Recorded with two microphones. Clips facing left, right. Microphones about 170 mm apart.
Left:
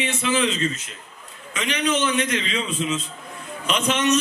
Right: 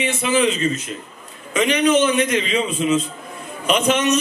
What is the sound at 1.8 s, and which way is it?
Speech, 55° right (ahead or behind).